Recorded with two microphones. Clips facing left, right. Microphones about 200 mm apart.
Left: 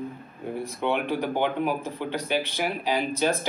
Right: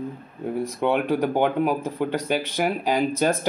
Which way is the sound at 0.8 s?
45° right (ahead or behind).